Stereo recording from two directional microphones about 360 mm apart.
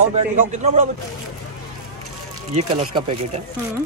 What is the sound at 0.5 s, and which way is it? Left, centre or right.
Speech, centre.